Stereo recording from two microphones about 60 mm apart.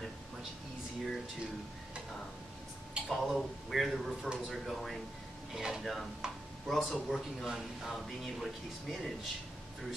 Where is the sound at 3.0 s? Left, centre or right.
Centre.